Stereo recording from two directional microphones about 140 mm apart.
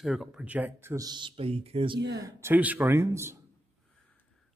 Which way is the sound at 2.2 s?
15° right (ahead or behind).